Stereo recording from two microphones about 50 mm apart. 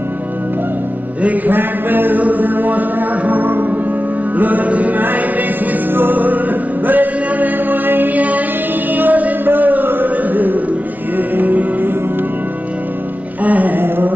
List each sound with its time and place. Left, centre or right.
1.2 s a man's voice: right
4.4 s music: right
13.4 s music: right